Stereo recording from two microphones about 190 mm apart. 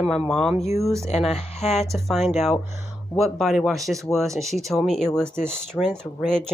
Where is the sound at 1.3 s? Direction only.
35° left (ahead or behind).